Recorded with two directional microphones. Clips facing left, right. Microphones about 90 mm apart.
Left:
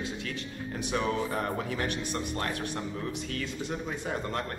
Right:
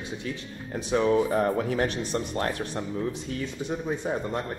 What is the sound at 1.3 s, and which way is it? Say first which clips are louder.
Speech: right 7 dB; 35° right (ahead or behind).